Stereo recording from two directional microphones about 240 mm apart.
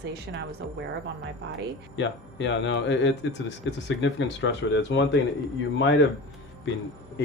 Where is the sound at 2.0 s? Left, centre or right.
Left.